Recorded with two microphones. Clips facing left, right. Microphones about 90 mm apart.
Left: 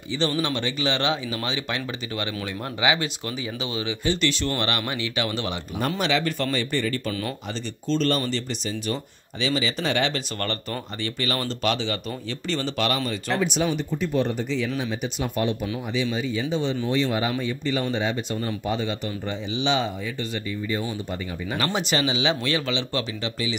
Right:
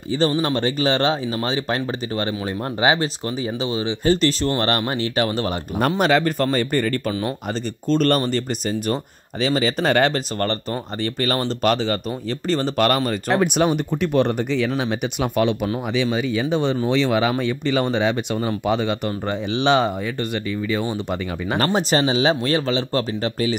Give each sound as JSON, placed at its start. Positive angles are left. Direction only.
{"t": 0.1, "sound": "speech", "side_deg": -40}
{"t": 13.7, "sound": "speech", "side_deg": -65}
{"t": 21.5, "sound": "speech", "side_deg": -40}